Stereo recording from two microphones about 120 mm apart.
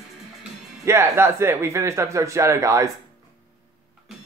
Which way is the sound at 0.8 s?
20° right (ahead or behind).